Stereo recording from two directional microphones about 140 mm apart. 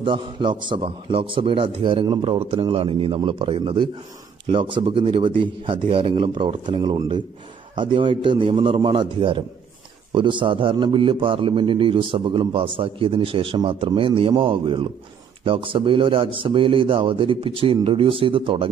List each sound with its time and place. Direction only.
0.0 s a man's voice: 35° right (ahead or behind)